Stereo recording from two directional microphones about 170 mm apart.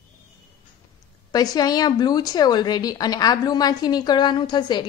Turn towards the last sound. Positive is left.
turn(degrees=25)  # may be behind; listen again after turning